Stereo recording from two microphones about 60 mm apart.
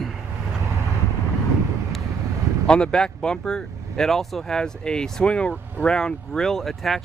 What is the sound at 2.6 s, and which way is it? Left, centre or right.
Speech, centre.